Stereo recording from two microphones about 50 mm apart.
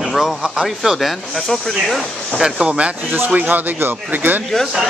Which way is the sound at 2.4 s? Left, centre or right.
Centre.